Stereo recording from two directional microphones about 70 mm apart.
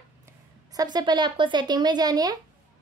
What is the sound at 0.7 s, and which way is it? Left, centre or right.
Speech, right.